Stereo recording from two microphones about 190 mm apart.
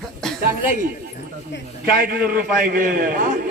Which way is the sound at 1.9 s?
50° right (ahead or behind).